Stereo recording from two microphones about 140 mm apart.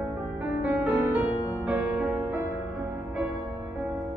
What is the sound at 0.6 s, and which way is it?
Music, 10° right (ahead or behind).